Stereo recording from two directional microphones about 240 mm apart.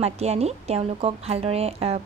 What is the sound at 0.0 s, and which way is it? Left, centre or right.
Speech, right.